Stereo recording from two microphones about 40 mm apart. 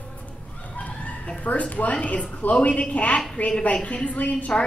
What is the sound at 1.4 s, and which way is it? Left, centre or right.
Speech, left.